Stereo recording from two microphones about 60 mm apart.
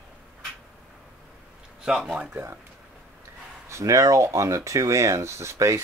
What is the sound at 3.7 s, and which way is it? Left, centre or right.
Speech, right.